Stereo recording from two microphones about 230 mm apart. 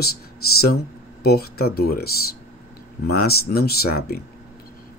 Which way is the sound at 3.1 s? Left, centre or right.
Left.